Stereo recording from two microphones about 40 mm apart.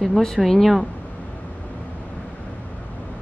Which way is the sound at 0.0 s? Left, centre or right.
Centre.